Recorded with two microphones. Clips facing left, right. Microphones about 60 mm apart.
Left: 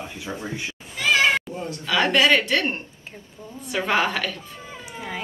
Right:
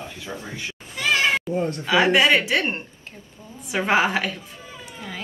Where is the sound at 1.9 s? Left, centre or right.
Centre.